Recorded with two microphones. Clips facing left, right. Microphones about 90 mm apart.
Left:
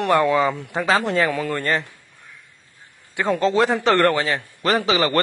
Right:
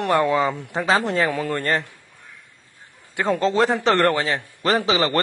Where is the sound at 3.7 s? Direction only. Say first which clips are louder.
Left 1 dB; 20° right (ahead or behind).